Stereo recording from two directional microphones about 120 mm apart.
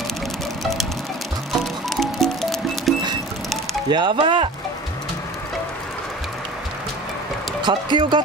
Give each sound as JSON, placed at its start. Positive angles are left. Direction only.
{"t": 2.0, "sound": "music", "side_deg": 5}
{"t": 3.9, "sound": "speech", "side_deg": -40}
{"t": 7.6, "sound": "speech", "side_deg": -40}